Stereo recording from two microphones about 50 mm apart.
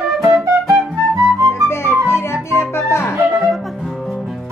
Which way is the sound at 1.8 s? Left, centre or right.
Left.